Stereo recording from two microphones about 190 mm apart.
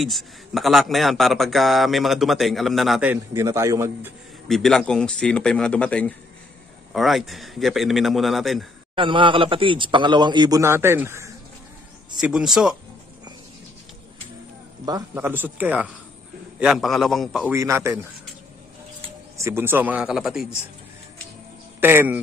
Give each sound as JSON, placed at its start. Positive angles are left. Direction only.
{"t": 0.0, "sound": "a man's voice", "side_deg": 0}
{"t": 4.5, "sound": "a man's voice", "side_deg": 0}
{"t": 8.9, "sound": "a man's voice", "side_deg": -25}
{"t": 12.2, "sound": "a man's voice", "side_deg": -5}
{"t": 14.9, "sound": "a man's voice", "side_deg": -15}
{"t": 17.5, "sound": "a man's voice", "side_deg": -15}
{"t": 19.3, "sound": "a man's voice", "side_deg": -15}
{"t": 21.7, "sound": "speech", "side_deg": -10}